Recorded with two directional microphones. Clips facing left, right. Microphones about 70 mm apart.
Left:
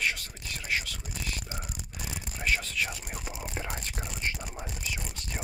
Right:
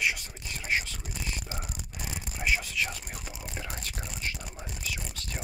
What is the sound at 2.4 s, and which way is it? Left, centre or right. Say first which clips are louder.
Speech: right 1 dB; centre.